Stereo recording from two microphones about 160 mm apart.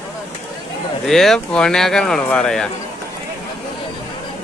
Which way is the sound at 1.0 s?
Centre (ahead or behind).